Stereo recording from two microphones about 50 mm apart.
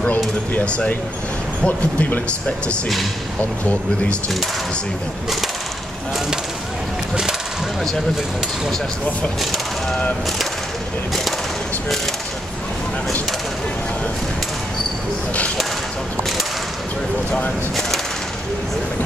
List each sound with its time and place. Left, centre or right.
1.6 s speech: left
3.3 s speech: left